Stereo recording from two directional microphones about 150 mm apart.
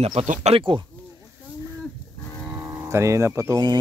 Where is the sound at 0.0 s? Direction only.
40° right (ahead or behind).